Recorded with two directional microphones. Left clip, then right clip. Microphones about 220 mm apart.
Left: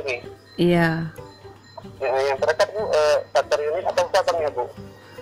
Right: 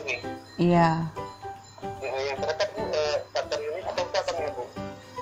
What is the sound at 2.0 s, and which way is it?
Speech, 45° left (ahead or behind).